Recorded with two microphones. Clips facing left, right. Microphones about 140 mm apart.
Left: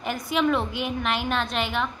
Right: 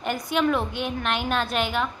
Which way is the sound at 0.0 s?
Centre (ahead or behind).